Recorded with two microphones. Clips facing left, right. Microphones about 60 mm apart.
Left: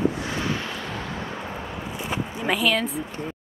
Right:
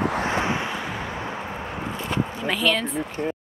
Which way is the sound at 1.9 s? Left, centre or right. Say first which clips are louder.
Right 2 dB; centre.